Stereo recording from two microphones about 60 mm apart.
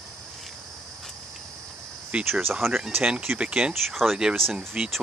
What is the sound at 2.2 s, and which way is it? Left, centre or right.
Speech, right.